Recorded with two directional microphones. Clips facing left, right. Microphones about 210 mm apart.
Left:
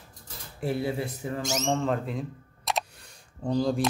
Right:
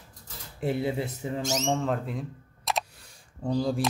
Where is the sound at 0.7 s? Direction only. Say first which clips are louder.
Right 1 dB; 20° right (ahead or behind).